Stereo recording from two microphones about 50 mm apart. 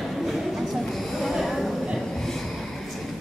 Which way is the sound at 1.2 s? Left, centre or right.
Centre.